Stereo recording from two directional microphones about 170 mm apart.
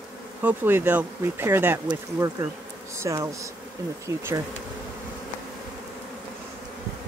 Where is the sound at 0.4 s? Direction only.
10° right (ahead or behind).